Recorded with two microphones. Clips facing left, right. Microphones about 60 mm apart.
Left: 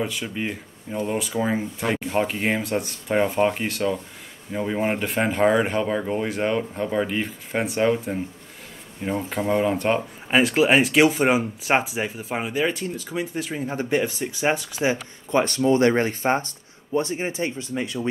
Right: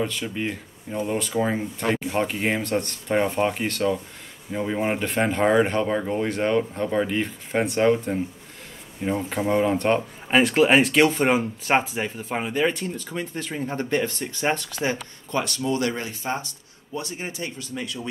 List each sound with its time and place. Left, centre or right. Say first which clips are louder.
0.0 s speech: even; centre
15.3 s speech: left 6 dB; left